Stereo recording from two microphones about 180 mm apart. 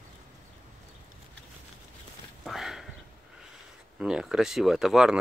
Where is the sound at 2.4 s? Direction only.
Centre (ahead or behind).